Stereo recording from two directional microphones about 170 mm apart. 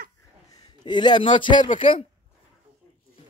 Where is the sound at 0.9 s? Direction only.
25° left (ahead or behind).